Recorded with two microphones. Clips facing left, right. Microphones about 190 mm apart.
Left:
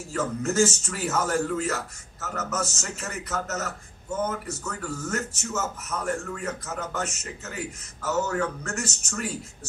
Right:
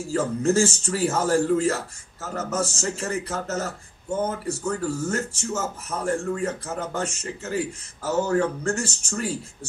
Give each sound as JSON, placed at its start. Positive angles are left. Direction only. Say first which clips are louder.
{"t": 0.0, "sound": "speech", "louder": "right 5 dB", "side_deg": -30}